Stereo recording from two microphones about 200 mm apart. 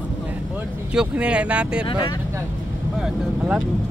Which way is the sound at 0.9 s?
5° right (ahead or behind).